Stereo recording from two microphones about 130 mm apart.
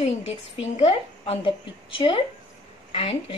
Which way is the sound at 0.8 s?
50° left (ahead or behind).